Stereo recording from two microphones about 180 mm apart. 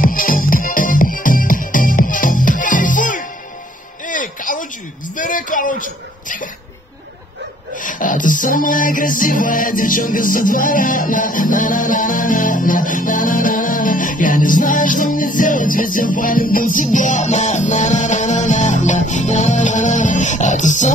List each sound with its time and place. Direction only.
0.0 s music: 50° left (ahead or behind)
5.1 s a sound: 45° left (ahead or behind)
7.7 s music: 45° left (ahead or behind)